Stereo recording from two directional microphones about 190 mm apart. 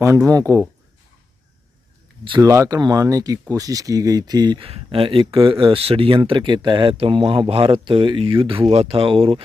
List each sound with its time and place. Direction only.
0.0 s speech: 15° right (ahead or behind)
2.2 s speech: 20° right (ahead or behind)